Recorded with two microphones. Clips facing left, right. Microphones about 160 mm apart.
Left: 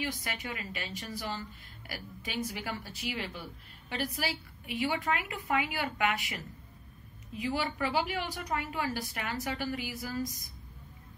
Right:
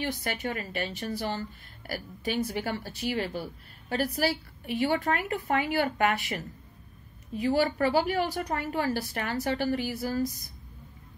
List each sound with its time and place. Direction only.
0.3 s a woman's voice: 40° right (ahead or behind)